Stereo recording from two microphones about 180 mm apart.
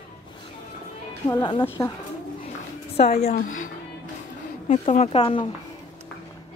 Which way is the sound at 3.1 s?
35° left (ahead or behind).